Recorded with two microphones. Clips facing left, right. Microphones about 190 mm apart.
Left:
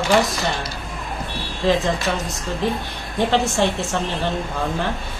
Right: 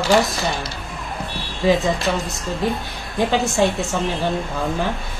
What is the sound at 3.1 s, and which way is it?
Speech, 10° right (ahead or behind).